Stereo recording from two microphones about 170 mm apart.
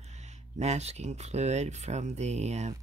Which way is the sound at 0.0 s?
40° right (ahead or behind).